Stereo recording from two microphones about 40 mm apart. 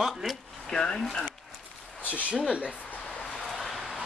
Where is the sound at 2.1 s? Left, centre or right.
Right.